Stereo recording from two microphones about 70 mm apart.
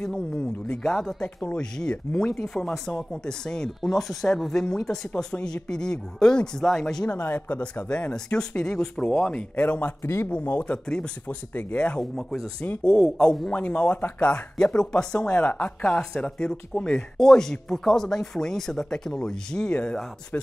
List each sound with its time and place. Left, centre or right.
0.0 s speech: centre
10.0 s speech: left
10.3 s speech: left
12.0 s speech: centre